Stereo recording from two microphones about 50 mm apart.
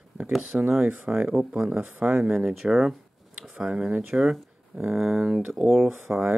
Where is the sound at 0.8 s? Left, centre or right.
Centre.